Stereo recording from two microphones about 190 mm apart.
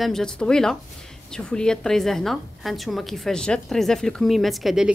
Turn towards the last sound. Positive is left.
turn(degrees=0)  # may be behind; listen again after turning